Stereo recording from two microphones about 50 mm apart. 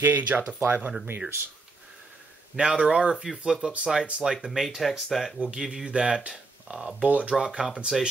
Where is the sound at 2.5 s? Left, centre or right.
Centre.